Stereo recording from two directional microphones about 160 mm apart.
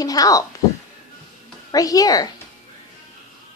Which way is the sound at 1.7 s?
20° left (ahead or behind).